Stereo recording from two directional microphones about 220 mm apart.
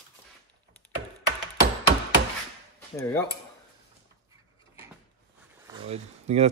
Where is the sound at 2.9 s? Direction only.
10° left (ahead or behind).